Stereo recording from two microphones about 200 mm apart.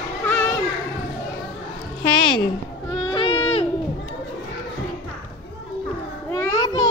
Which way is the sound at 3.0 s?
25° left (ahead or behind).